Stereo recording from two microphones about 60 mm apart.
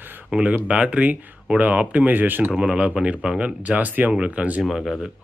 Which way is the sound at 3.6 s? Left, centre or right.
Right.